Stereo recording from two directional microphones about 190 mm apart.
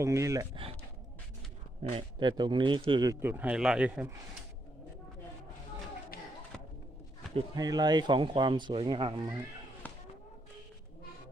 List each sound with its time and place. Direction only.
0.0 s speech: 15° right (ahead or behind)
1.8 s speech: 30° right (ahead or behind); by 4.2 s 10° right (ahead or behind)
7.3 s speech: 20° right (ahead or behind)
9.8 s a sound: 10° left (ahead or behind)